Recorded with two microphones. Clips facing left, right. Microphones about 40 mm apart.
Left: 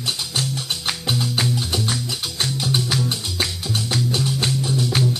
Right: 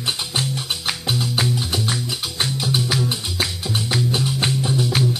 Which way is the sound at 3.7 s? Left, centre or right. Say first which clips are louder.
Right 2 dB; centre.